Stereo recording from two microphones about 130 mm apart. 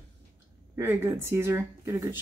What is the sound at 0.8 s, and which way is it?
Speech, 20° right (ahead or behind).